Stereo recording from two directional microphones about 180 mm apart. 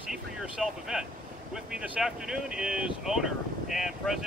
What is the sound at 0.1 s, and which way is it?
Boat, 5° right (ahead or behind).